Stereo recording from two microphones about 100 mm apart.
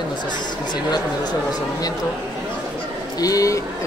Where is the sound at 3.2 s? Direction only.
35° left (ahead or behind).